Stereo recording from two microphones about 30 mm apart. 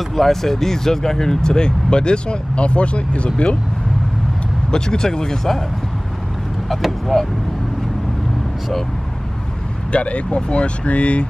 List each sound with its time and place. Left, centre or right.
0.1 s speech: centre; by 3.3 s left
4.6 s speech: left
6.7 s speech: centre
9.9 s speech: left